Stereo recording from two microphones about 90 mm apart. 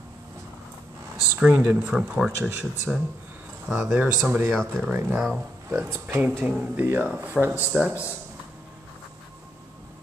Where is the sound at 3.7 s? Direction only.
20° right (ahead or behind).